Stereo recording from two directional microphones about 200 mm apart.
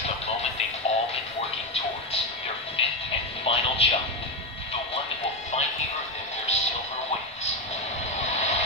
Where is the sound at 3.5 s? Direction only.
30° left (ahead or behind).